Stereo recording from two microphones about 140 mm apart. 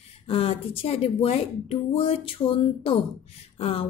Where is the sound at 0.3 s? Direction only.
45° left (ahead or behind).